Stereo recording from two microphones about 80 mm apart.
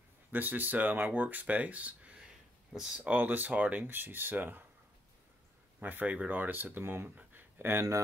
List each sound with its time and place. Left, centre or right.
0.3 s speech: right
3.0 s speech: right
5.8 s speech: right
7.2 s a sound: right